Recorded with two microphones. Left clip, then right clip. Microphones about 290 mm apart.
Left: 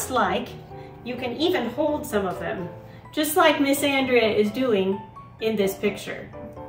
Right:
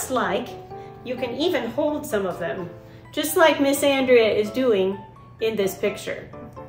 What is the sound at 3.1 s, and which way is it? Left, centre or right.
A woman's voice, centre.